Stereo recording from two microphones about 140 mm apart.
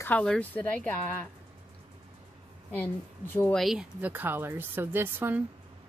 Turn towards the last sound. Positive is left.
turn(degrees=-15)  # may be behind; listen again after turning